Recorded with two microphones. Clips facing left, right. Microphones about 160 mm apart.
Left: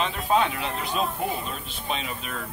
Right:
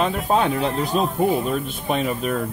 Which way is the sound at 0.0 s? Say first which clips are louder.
Right 4 dB; 40° right (ahead or behind).